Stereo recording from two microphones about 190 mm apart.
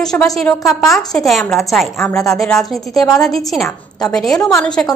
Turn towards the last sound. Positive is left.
turn(degrees=20)  # may be behind; listen again after turning